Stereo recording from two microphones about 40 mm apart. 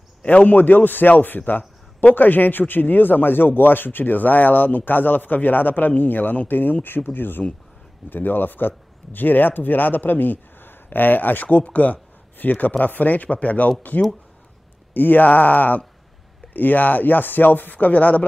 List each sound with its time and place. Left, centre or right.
0.2 s a man's voice: left